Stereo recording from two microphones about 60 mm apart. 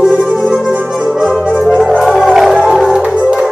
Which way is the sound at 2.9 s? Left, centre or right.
Centre.